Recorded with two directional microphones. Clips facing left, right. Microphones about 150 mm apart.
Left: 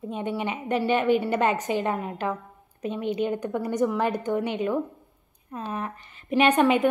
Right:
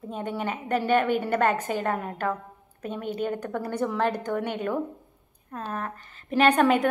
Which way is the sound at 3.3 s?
10° left (ahead or behind).